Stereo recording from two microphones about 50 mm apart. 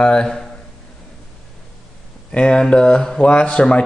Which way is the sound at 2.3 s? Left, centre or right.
Centre.